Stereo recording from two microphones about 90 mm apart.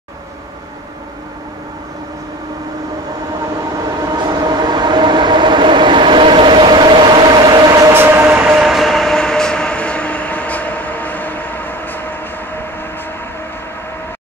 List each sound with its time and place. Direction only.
3.8 s train: 50° right (ahead or behind)
7.9 s train: 25° right (ahead or behind)
8.5 s train: centre (ahead or behind); by 12.6 s 20° left (ahead or behind)